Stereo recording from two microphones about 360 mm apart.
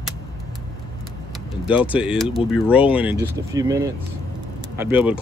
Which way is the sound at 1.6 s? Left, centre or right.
Centre.